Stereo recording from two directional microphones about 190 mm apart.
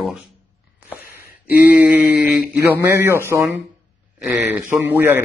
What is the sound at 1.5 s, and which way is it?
Speech, 10° right (ahead or behind).